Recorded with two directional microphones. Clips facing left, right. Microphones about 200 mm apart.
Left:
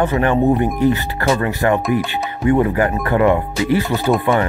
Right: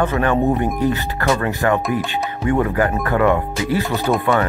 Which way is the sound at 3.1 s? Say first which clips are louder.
Left 2 dB; 20° left (ahead or behind).